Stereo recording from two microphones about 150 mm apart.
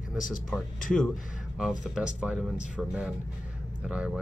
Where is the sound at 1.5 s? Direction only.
5° right (ahead or behind).